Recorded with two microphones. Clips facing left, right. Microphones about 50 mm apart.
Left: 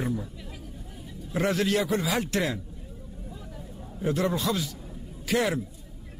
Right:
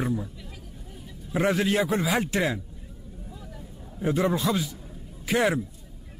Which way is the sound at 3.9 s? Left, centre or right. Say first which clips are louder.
Right 2 dB; centre.